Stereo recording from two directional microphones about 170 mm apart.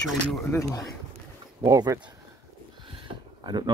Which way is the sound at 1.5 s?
20° right (ahead or behind).